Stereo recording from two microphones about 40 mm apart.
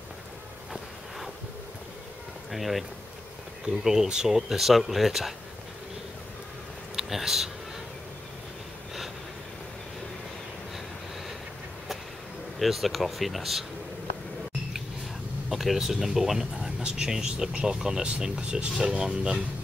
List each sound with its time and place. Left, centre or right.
2.5 s speech: centre
3.8 s speech: centre
7.0 s speech: centre
12.5 s speech: centre
15.5 s speech: centre
16.8 s speech: centre